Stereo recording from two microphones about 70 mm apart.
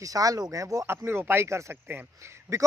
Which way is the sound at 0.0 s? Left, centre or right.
Right.